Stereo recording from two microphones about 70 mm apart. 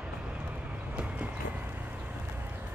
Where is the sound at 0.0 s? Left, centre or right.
Right.